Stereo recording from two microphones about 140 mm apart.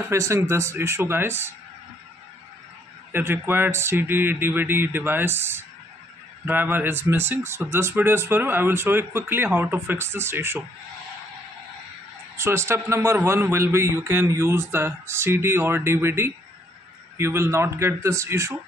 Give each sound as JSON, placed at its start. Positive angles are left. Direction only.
{"t": 0.1, "sound": "speech", "side_deg": -20}
{"t": 3.1, "sound": "speech", "side_deg": -15}
{"t": 12.4, "sound": "speech", "side_deg": -20}